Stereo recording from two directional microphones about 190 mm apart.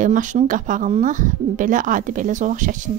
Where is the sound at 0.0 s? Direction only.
40° right (ahead or behind).